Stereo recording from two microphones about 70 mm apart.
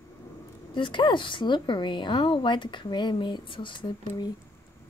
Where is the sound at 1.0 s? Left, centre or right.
Left.